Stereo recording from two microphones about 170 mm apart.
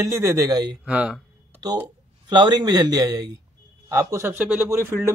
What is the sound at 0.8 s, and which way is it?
Speech, 5° right (ahead or behind).